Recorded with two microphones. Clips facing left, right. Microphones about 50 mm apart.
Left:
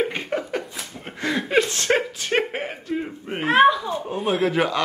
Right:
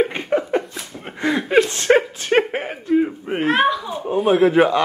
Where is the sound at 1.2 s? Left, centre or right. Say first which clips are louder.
Right 4 dB; centre.